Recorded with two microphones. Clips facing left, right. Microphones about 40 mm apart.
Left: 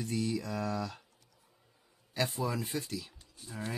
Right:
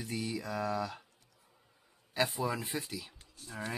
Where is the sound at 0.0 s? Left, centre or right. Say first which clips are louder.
Left 3 dB; centre.